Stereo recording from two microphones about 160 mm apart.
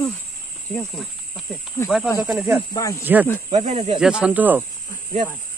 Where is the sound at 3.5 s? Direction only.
45° right (ahead or behind).